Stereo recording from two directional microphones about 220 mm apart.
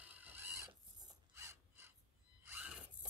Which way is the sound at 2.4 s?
5° right (ahead or behind).